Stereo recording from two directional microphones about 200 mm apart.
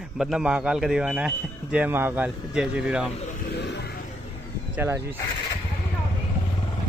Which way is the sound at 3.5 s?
55° left (ahead or behind).